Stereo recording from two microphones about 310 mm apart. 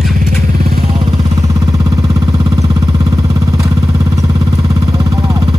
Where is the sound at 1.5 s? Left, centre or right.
Centre.